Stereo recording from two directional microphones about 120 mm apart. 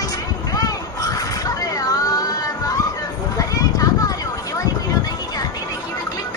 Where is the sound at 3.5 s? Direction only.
30° left (ahead or behind).